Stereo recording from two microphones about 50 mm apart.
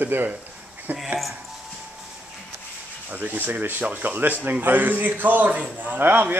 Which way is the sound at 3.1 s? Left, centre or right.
Right.